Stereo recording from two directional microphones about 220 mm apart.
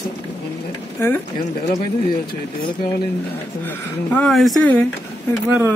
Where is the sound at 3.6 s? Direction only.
5° left (ahead or behind).